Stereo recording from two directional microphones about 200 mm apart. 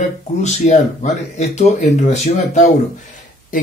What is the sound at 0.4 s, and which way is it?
Speech, 35° left (ahead or behind).